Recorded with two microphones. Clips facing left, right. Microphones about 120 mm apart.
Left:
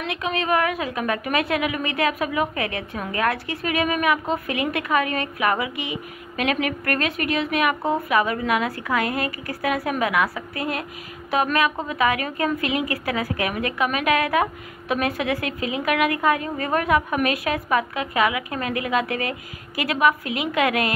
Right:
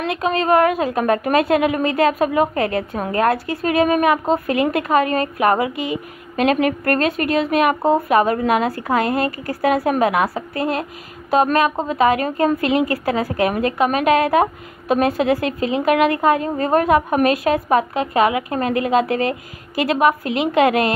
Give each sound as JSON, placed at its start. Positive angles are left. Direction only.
{"t": 0.0, "sound": "a woman's voice", "side_deg": -40}